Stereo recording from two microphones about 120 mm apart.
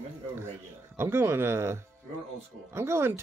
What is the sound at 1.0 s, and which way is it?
Speech, 20° right (ahead or behind).